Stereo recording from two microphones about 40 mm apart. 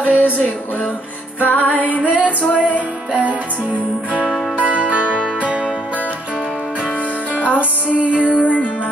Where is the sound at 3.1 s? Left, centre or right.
Right.